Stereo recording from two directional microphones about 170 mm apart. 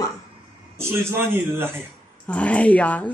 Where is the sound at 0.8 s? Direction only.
15° right (ahead or behind).